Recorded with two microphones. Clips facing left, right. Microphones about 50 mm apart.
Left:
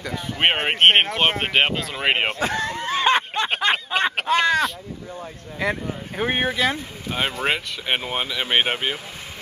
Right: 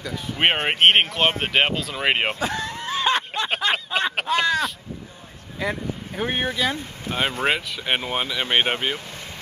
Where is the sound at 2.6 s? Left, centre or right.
Left.